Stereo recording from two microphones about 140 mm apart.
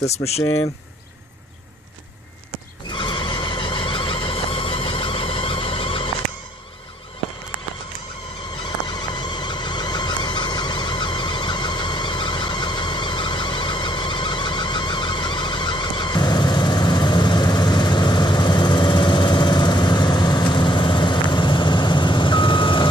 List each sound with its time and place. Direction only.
0.0 s speech: 50° left (ahead or behind)
2.9 s vehicle: 35° left (ahead or behind)
8.6 s a sound: 30° left (ahead or behind)